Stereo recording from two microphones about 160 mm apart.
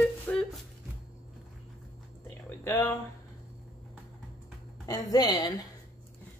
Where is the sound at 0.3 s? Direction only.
Centre (ahead or behind).